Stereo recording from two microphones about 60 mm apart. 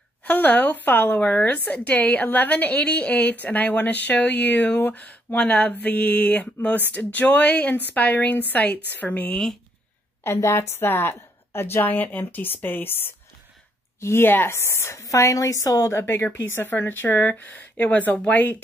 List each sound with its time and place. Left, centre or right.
0.2 s a woman's voice: left
10.2 s a woman's voice: left
15.0 s a woman's voice: left
15.9 s a woman's voice: left